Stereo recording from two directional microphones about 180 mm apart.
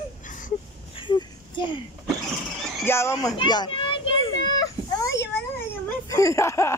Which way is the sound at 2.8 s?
15° left (ahead or behind).